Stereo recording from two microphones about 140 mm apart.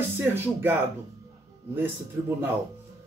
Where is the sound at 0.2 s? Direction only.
15° right (ahead or behind).